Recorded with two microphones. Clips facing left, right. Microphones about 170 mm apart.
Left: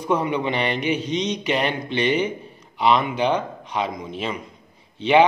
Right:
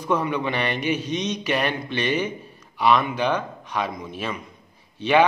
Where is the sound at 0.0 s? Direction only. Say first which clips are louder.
Left 2 dB; 15° left (ahead or behind).